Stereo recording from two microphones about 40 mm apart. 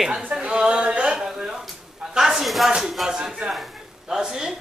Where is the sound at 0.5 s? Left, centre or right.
Centre.